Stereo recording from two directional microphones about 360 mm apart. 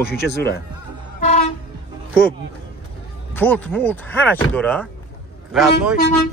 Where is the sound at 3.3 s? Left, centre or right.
Centre.